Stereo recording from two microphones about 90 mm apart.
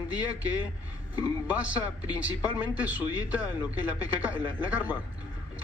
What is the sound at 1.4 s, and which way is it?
A man's voice, 15° right (ahead or behind).